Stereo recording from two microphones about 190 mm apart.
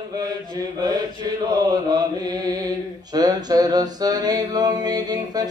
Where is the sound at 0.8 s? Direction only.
20° right (ahead or behind).